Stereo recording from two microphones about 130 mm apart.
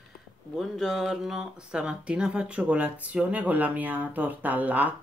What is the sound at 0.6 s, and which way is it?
Speech, centre (ahead or behind).